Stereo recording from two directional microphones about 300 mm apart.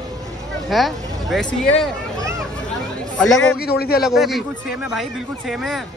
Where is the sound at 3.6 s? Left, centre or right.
Left.